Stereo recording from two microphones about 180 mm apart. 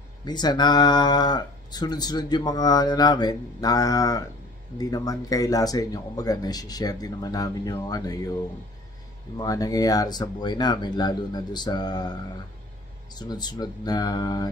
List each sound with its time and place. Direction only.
0.2 s speech: 25° left (ahead or behind)
9.4 s speech: 20° left (ahead or behind)